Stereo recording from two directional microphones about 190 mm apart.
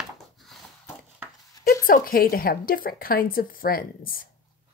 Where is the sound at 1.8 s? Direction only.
50° left (ahead or behind).